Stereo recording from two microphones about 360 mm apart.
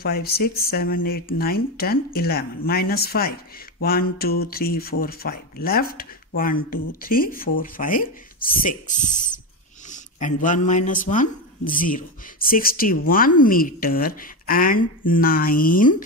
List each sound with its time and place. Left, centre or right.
0.0 s speech: left